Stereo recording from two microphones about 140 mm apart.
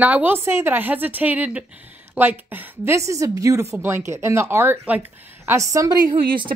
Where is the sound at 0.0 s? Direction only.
10° right (ahead or behind).